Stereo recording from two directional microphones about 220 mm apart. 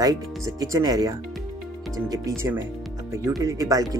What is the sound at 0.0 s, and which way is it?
Speech, 15° right (ahead or behind).